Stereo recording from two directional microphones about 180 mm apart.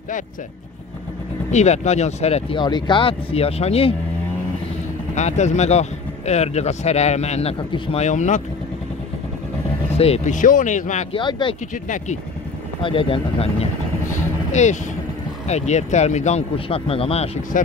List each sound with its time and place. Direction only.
1.5 s speech: 40° left (ahead or behind)
5.1 s speech: 40° left (ahead or behind)
9.9 s speech: 35° left (ahead or behind)
11.1 s speech: 25° left (ahead or behind)
11.7 s speech: 45° left (ahead or behind)
12.8 s speech: 30° left (ahead or behind)